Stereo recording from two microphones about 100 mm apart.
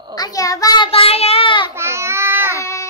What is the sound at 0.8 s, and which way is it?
Child singing, 70° left (ahead or behind).